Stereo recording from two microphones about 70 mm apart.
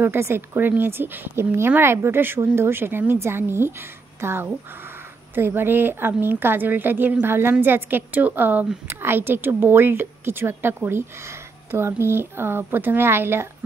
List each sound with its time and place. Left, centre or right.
0.0 s a woman's voice: right